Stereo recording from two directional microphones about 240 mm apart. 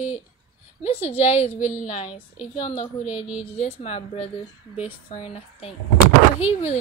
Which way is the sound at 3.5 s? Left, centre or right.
Left.